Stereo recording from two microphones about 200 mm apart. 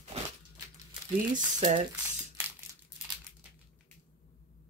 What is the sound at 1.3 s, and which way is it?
Speech, 35° right (ahead or behind).